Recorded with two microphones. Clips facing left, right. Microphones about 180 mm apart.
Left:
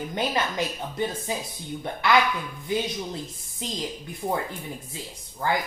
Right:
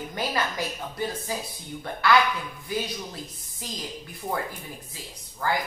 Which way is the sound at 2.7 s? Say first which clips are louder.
Left 3 dB; 20° left (ahead or behind).